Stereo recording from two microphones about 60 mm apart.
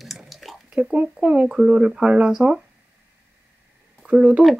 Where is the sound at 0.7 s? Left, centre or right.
Centre.